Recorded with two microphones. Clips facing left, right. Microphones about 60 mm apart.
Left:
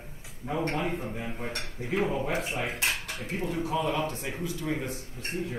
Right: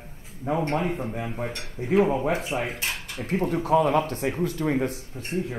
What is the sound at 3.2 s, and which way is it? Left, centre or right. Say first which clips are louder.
Speech: right 6 dB; right.